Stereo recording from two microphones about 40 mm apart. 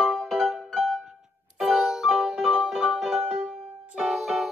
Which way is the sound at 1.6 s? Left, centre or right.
Right.